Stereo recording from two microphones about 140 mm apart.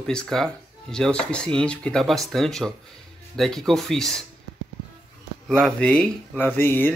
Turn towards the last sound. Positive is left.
turn(degrees=15)  # may be behind; listen again after turning